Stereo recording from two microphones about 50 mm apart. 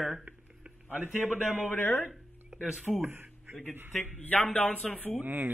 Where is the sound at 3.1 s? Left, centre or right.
Right.